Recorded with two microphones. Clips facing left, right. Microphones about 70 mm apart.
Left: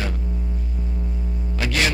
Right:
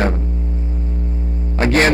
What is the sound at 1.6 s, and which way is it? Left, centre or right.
Music, right.